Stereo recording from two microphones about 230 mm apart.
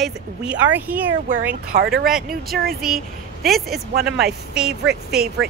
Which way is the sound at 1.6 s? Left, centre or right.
Right.